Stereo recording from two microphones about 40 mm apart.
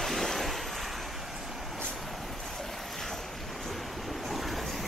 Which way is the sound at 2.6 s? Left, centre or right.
Centre.